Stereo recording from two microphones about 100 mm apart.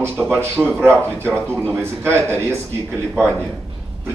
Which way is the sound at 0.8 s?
25° right (ahead or behind).